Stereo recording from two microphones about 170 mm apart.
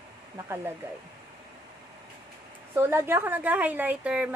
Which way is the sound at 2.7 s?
15° right (ahead or behind).